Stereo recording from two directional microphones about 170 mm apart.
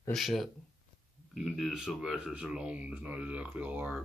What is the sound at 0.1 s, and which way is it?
Speech, centre (ahead or behind).